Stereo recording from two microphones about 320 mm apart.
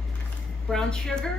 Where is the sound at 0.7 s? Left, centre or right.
Centre.